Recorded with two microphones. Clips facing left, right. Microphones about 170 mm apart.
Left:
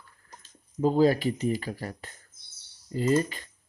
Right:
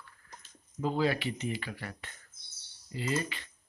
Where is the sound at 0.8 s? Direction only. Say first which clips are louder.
Left 8 dB; 40° left (ahead or behind).